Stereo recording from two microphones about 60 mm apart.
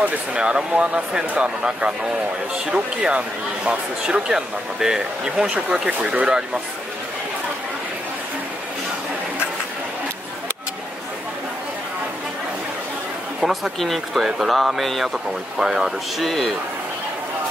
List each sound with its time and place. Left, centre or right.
0.0 s a man's voice: centre
5.5 s a man's voice: right
13.7 s a man's voice: centre
16.3 s speech: centre